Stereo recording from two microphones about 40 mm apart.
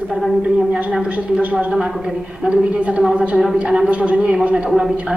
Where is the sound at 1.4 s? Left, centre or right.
Right.